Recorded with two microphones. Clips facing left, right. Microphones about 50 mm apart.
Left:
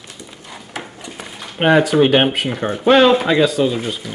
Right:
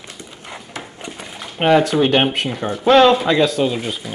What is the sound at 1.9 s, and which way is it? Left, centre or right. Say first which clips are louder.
Speech: left 2 dB; centre.